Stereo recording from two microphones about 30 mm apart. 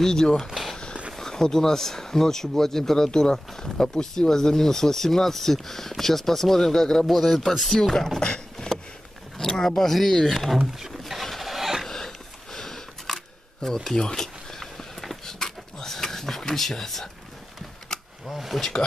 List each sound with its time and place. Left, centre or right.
0.0 s speech: centre
0.4 s speech: centre
1.1 s speech: centre
7.2 s speech: centre
7.7 s speech: centre
9.4 s speech: centre
11.1 s a sound: centre
12.5 s camera: centre
13.9 s a sound: left
17.8 s a sound: left
18.3 s speech: centre